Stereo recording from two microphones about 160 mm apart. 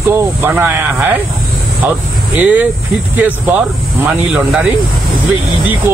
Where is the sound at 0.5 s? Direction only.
15° right (ahead or behind).